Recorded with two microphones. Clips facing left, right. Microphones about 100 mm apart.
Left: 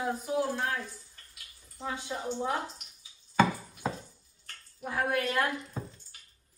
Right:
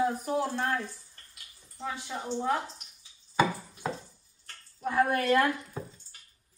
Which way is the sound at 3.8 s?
Centre (ahead or behind).